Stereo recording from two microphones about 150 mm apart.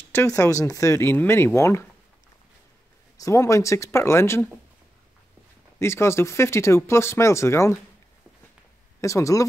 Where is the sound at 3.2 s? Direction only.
20° left (ahead or behind).